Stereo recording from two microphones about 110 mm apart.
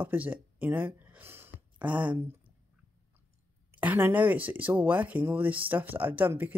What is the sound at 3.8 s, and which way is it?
Speech, 15° right (ahead or behind).